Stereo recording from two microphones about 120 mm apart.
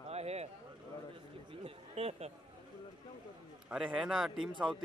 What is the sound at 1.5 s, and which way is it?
Speech, 55° right (ahead or behind).